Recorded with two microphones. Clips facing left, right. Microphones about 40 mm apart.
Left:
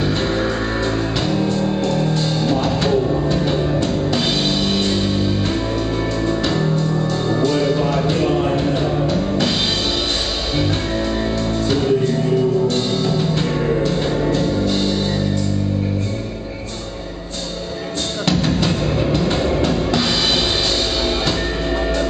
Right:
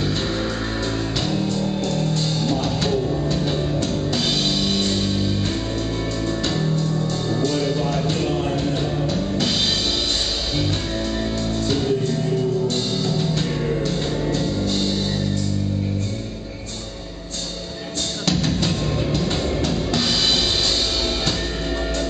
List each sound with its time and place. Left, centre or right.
1.2 s music: centre
11.6 s music: centre
18.2 s music: centre